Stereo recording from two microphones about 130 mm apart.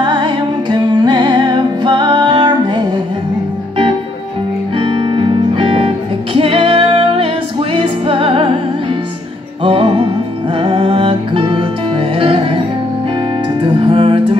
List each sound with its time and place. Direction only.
0.0 s music: 35° right (ahead or behind)
4.7 s music: 40° right (ahead or behind)
9.6 s music: 40° right (ahead or behind)
13.6 s music: 40° right (ahead or behind)